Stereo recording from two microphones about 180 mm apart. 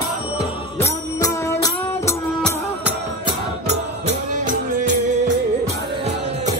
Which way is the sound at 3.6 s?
40° right (ahead or behind).